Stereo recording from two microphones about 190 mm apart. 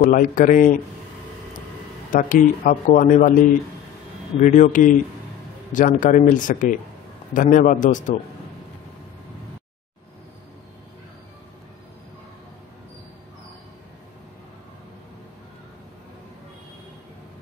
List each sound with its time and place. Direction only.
0.0 s speech: 45° left (ahead or behind)
2.1 s speech: 45° left (ahead or behind)
4.4 s speech: 40° left (ahead or behind)